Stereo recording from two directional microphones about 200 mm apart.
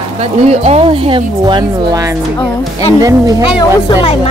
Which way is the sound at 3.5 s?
25° left (ahead or behind).